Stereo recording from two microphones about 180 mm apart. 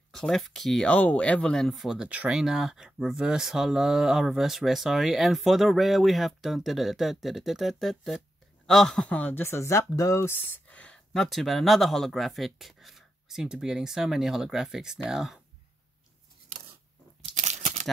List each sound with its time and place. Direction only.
0.1 s speech: centre (ahead or behind)
17.3 s crumpling: 40° right (ahead or behind)